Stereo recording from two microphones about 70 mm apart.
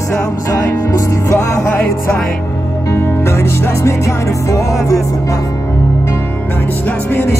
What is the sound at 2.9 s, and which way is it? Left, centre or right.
Music, left.